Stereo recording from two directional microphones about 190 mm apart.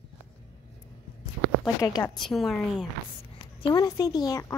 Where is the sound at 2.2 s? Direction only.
Centre (ahead or behind).